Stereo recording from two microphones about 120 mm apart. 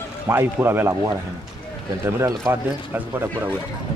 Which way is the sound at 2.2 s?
25° right (ahead or behind).